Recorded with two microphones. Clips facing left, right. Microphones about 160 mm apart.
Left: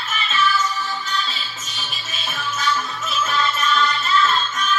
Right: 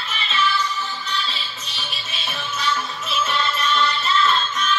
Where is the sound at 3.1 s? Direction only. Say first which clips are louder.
Left 1 dB; 45° left (ahead or behind).